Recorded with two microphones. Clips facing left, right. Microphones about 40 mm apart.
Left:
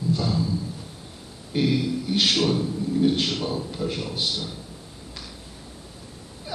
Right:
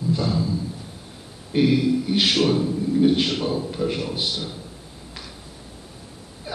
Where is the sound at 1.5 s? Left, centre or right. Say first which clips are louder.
Right 5 dB; centre.